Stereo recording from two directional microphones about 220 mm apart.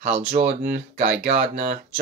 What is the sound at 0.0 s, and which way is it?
Speech, 30° right (ahead or behind).